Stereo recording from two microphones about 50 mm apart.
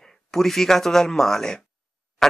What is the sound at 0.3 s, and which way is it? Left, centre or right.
Speech, centre.